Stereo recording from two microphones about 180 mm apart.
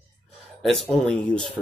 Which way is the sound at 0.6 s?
Centre (ahead or behind).